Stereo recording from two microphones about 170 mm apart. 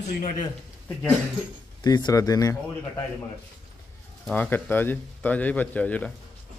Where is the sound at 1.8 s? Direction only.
25° left (ahead or behind).